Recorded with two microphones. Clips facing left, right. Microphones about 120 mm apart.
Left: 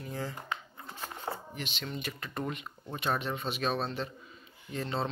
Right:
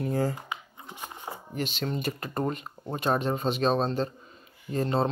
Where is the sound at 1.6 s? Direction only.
45° right (ahead or behind).